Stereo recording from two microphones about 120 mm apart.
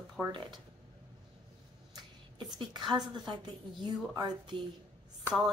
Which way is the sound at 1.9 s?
35° right (ahead or behind).